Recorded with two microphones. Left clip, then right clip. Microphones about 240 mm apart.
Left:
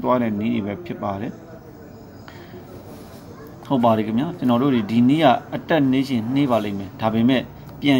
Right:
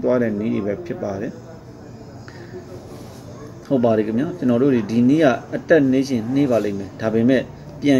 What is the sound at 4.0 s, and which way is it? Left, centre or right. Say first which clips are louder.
Speech: right 2 dB; left.